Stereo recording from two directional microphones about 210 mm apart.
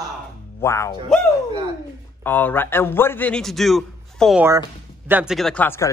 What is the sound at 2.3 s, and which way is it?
A man's voice, 10° left (ahead or behind).